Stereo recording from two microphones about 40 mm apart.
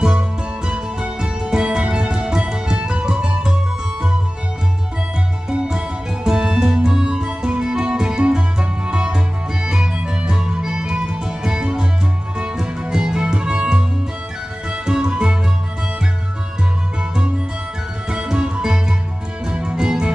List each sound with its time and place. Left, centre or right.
0.7 s music: right
5.5 s music: right
18.1 s music: right